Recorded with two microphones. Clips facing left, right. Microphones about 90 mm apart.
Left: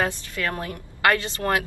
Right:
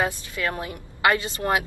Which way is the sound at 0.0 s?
20° right (ahead or behind).